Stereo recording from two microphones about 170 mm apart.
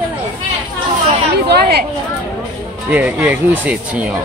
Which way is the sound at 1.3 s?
70° right (ahead or behind).